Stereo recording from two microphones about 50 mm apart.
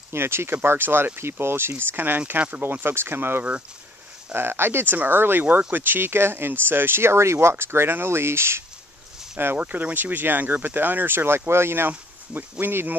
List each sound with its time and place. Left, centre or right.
0.1 s speech: right
2.6 s speech: right
9.6 s speech: right
12.4 s speech: right